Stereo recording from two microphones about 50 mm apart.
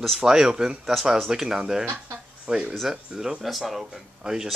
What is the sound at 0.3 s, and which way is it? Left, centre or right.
Speech, centre.